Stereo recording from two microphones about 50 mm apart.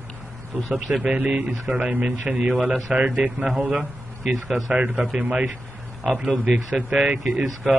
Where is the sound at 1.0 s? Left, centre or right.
Right.